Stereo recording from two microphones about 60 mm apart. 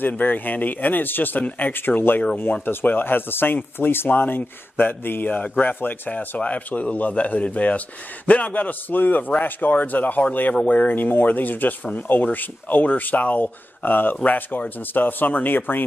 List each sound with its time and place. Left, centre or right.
0.1 s speech: left